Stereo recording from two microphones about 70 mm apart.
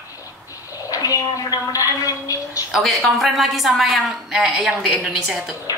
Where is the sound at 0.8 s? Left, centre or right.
Left.